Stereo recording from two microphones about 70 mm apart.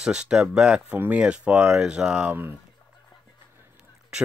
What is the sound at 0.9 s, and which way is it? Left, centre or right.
Speech, right.